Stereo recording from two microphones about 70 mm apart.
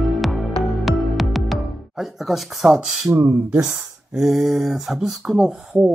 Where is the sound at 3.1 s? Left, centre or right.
Right.